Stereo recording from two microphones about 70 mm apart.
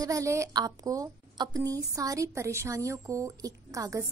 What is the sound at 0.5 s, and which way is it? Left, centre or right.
A woman's voice, right.